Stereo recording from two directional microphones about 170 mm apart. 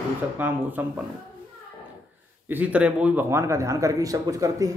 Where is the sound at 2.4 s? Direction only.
10° right (ahead or behind).